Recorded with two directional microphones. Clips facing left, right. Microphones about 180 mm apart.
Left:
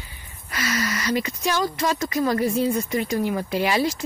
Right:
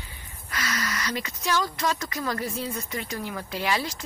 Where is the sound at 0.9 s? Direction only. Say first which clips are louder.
Left 7 dB; 10° left (ahead or behind).